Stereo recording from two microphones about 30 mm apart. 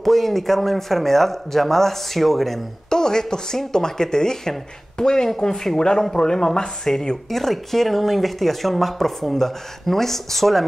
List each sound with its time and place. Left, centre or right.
0.0 s speech: centre
2.9 s speech: left
7.2 s speech: centre